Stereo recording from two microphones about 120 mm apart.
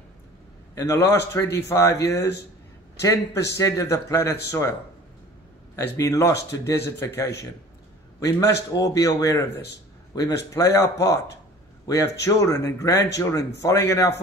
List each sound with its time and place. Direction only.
0.7 s speech: 25° left (ahead or behind)
5.8 s speech: 25° left (ahead or behind)